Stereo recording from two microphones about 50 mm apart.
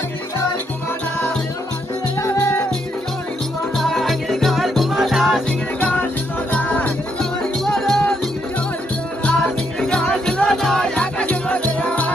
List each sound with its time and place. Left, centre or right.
2.3 s music: left
3.7 s music: centre
5.8 s music: left
7.2 s music: centre
9.2 s music: centre
11.0 s music: left